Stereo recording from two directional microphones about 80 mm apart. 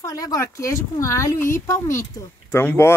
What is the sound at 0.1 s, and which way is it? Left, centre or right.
Speech, left.